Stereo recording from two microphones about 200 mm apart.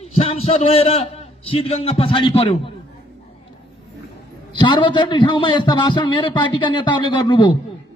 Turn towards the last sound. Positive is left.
turn(degrees=20)  # may be behind; listen again after turning